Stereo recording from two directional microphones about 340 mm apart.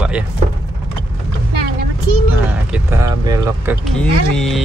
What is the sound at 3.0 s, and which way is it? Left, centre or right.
Speech, centre.